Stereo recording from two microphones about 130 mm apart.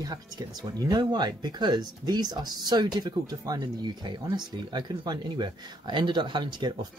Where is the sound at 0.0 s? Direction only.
30° right (ahead or behind).